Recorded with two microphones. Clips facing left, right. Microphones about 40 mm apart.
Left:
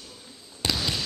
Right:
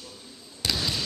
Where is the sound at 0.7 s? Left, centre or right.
Centre.